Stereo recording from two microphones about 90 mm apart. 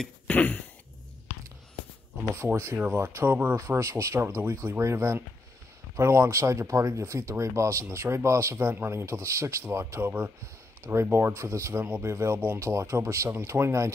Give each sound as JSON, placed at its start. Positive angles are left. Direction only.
{"t": 0.3, "sound": "a sound", "side_deg": 20}
{"t": 2.3, "sound": "speech", "side_deg": -30}
{"t": 3.5, "sound": "speech", "side_deg": -35}